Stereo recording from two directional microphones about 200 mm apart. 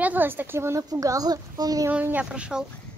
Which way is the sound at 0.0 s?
10° right (ahead or behind).